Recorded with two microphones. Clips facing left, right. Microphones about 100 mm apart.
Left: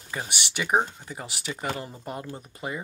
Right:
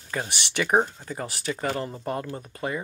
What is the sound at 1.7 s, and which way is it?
Speech, 35° right (ahead or behind).